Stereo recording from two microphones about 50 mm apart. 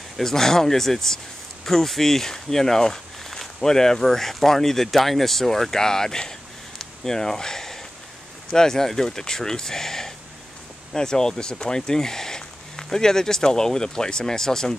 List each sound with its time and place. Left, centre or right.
0.2 s speech: centre
6.8 s a sound: centre
8.5 s speech: centre